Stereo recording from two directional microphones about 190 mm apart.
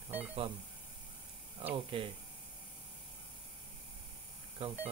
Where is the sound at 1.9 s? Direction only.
25° right (ahead or behind).